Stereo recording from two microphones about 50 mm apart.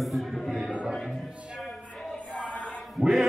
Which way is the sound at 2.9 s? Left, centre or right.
Centre.